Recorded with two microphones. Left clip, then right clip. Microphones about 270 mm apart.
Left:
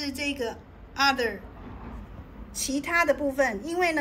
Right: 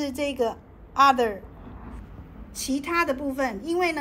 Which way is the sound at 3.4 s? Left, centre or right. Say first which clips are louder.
Even; centre.